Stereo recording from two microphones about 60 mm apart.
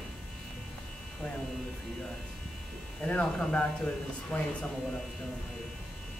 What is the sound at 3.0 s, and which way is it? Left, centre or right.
Speech, left.